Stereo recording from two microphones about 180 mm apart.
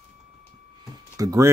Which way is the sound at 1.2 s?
20° right (ahead or behind).